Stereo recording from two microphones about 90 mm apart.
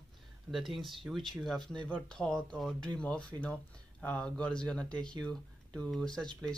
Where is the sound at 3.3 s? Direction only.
45° right (ahead or behind).